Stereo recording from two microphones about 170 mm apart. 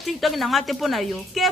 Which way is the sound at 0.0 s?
Centre (ahead or behind).